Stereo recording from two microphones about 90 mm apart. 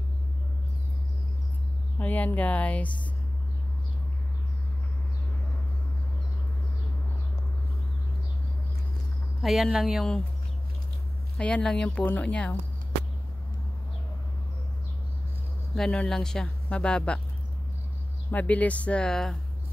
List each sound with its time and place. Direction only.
2.0 s speech: 20° left (ahead or behind)
9.4 s speech: centre (ahead or behind)
11.3 s speech: 10° left (ahead or behind)
15.7 s speech: 10° left (ahead or behind)
18.3 s speech: 15° left (ahead or behind)